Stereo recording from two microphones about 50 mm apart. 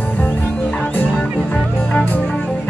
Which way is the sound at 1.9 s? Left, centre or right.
Left.